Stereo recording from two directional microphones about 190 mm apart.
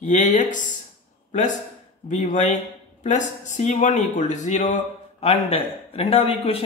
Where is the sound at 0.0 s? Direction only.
40° left (ahead or behind).